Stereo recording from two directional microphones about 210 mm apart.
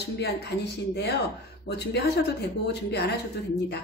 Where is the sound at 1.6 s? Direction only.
55° left (ahead or behind).